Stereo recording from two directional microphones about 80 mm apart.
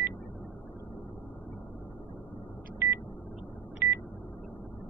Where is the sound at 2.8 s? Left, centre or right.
Right.